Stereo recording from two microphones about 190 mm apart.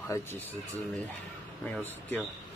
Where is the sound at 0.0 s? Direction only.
10° left (ahead or behind).